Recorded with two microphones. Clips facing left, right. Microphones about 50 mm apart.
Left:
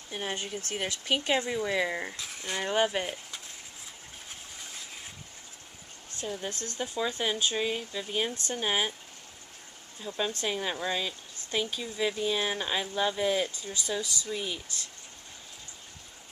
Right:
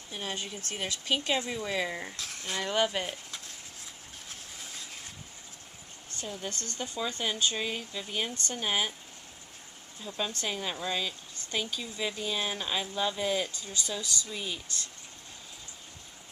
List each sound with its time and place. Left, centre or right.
0.1 s speech: left; by 2.5 s centre
2.5 s speech: left
6.2 s speech: centre
10.0 s speech: centre